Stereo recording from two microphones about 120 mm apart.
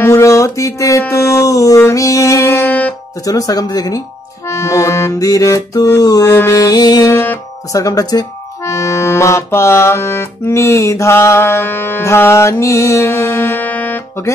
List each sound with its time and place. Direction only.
0.0 s speech: 25° left (ahead or behind)
2.6 s music: 10° left (ahead or behind)
3.3 s speech: 30° left (ahead or behind)
4.5 s music: 25° left (ahead or behind)
7.7 s speech: 30° left (ahead or behind)